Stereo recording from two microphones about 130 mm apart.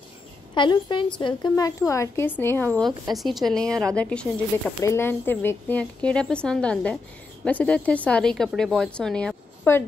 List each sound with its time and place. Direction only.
0.6 s a woman's voice: 35° left (ahead or behind)
1.6 s a woman's voice: 25° left (ahead or behind)
3.1 s speech: centre (ahead or behind)
4.8 s a woman's voice: 20° left (ahead or behind)
9.7 s a woman's voice: 20° left (ahead or behind)